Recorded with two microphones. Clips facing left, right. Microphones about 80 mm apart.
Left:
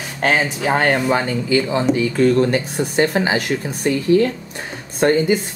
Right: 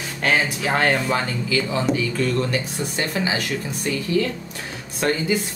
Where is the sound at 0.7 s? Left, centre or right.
Left.